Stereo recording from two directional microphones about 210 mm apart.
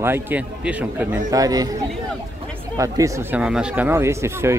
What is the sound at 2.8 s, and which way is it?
Speech, 15° right (ahead or behind).